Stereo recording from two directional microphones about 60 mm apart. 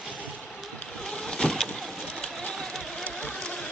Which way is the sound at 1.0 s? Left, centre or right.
Centre.